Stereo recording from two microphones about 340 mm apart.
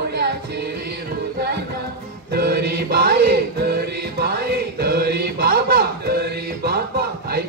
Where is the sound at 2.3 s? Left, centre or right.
Right.